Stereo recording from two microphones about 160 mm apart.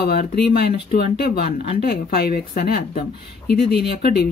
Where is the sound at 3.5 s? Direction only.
90° left.